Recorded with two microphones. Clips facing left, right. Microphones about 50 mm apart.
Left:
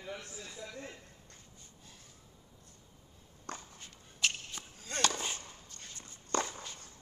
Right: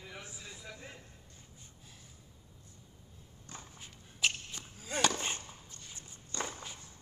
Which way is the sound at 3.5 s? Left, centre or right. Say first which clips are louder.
Left 6 dB; left.